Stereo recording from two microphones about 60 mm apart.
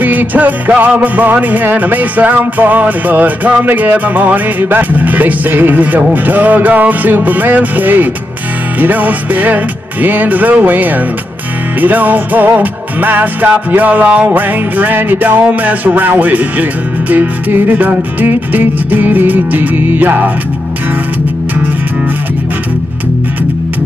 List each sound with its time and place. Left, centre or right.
0.0 s music: right